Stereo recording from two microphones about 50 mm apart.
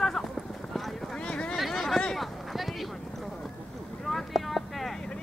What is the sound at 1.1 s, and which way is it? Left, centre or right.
Speech, centre.